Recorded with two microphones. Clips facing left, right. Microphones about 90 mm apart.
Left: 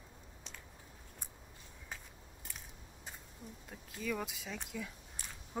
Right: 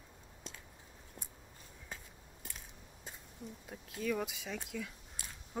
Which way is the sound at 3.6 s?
Centre (ahead or behind).